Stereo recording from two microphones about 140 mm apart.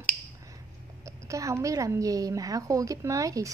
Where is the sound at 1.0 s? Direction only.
20° right (ahead or behind).